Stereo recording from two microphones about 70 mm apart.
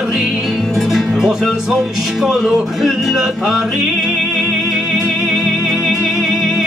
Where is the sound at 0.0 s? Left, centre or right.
Centre.